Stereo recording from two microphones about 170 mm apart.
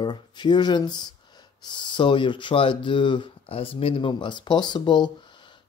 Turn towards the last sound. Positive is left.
turn(degrees=25)  # may be behind; listen again after turning